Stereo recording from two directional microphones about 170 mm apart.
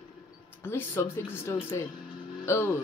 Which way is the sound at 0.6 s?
15° left (ahead or behind).